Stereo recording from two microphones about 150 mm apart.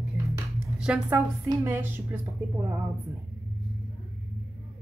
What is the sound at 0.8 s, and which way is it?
A woman's voice, 5° right (ahead or behind).